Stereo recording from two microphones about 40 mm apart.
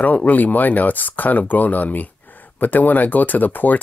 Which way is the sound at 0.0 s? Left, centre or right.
Left.